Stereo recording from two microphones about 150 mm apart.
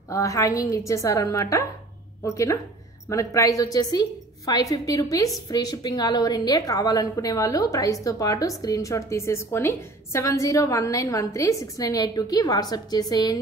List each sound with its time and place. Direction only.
0.1 s a woman's voice: 20° left (ahead or behind)